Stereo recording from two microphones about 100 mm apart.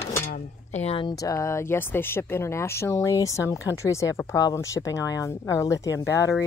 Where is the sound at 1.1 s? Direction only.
35° left (ahead or behind).